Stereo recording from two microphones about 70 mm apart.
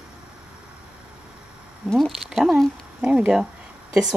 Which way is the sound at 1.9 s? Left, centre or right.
Centre.